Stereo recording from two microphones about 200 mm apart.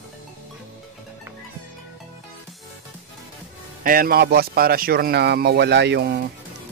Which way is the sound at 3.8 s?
45° right (ahead or behind).